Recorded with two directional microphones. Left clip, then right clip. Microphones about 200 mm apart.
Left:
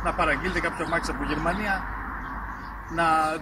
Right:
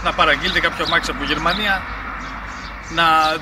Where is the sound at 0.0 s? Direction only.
Centre (ahead or behind).